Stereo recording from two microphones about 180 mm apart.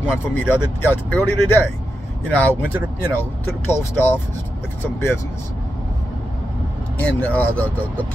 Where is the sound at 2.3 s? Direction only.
10° left (ahead or behind).